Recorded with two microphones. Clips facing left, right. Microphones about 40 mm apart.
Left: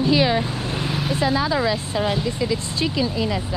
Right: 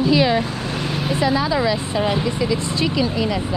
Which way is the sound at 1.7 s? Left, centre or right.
Right.